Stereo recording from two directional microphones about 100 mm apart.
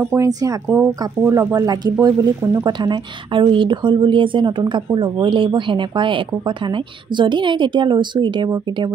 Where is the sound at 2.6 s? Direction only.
50° right (ahead or behind).